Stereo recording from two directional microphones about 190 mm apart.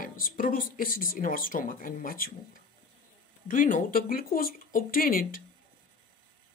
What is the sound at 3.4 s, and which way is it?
Speech, 45° left (ahead or behind).